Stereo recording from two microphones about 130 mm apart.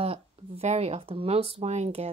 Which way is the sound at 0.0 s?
50° right (ahead or behind).